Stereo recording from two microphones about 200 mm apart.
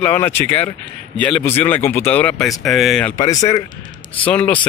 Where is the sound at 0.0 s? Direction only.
10° left (ahead or behind).